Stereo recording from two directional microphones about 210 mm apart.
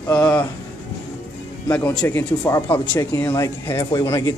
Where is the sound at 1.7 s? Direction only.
10° left (ahead or behind).